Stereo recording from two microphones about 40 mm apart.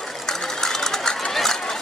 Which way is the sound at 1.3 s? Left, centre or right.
Centre.